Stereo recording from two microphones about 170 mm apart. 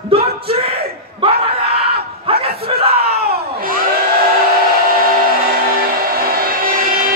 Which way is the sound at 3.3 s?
60° right (ahead or behind).